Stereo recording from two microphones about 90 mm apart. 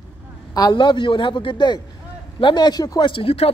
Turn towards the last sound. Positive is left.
turn(degrees=90)